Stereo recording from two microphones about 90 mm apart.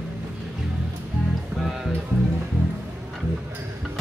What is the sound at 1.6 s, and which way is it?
Music, centre (ahead or behind).